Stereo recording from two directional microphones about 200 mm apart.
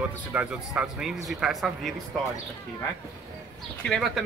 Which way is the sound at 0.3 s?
5° right (ahead or behind).